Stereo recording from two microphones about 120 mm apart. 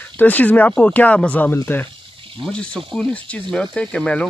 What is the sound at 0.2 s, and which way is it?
Speech, 15° left (ahead or behind).